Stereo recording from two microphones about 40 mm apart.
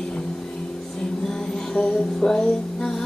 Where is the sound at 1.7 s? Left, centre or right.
Centre.